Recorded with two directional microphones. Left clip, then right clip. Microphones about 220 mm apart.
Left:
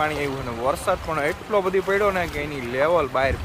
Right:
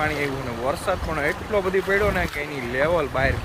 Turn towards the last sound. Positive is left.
turn(degrees=15)  # may be behind; listen again after turning